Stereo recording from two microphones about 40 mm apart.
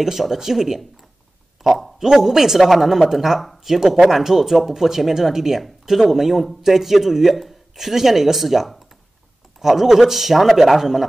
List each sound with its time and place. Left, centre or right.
0.0 s speech: centre